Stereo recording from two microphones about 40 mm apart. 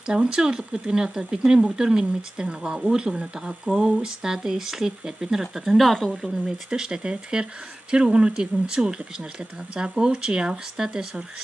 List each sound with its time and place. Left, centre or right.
0.0 s speech: centre
5.6 s speech: centre
6.4 s speech: right